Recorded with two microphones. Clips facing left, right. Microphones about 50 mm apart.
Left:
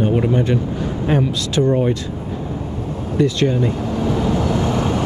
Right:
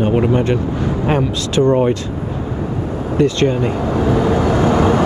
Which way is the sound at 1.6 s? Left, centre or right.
Centre.